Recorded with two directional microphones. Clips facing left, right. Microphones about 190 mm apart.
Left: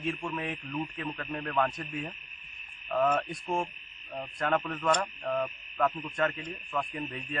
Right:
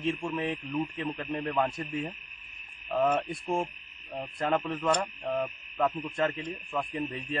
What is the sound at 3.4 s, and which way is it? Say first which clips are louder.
Owl: right 2 dB; 10° right (ahead or behind).